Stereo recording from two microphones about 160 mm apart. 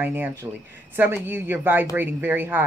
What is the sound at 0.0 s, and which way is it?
Speech, 10° right (ahead or behind).